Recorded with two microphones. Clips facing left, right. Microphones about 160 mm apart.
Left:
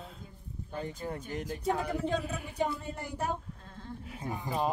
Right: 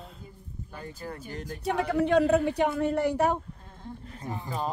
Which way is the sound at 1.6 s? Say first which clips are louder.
Right 6 dB; 75° right (ahead or behind).